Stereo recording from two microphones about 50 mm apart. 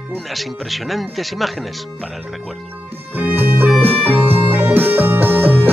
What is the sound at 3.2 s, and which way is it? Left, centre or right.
Music, right.